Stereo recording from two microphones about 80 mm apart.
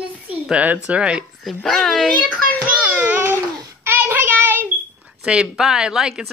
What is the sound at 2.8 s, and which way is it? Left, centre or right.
Babbling, centre.